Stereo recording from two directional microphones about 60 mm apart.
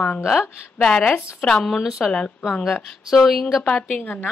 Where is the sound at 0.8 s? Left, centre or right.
Centre.